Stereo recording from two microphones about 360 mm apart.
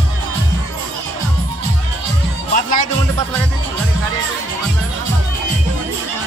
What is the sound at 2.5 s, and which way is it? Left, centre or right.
Music, left.